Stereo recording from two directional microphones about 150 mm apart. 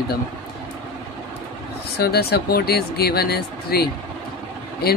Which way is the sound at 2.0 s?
90° left.